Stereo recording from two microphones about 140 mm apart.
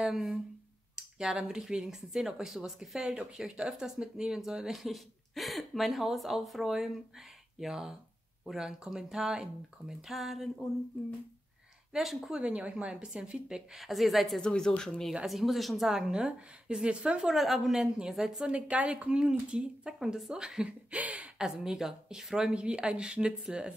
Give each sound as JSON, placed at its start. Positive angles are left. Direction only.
{"t": 0.0, "sound": "a woman's voice", "side_deg": -5}
{"t": 11.9, "sound": "a woman's voice", "side_deg": -5}